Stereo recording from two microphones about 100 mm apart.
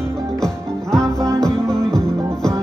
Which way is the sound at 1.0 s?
30° right (ahead or behind).